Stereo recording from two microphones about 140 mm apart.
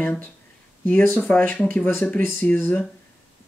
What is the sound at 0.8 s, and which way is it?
Speech, 15° left (ahead or behind).